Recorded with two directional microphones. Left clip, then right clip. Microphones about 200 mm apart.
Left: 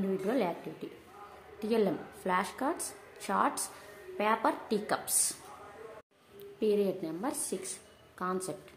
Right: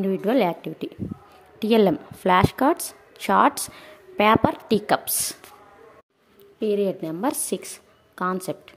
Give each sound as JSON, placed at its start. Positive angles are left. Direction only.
{"t": 0.2, "sound": "a woman's voice", "side_deg": -45}
{"t": 6.6, "sound": "a woman's voice", "side_deg": -35}